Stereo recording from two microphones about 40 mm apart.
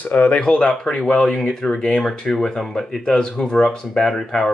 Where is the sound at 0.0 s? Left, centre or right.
Left.